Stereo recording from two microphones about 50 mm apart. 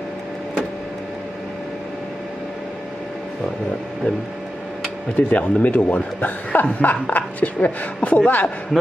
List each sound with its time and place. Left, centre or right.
5.1 s speech: left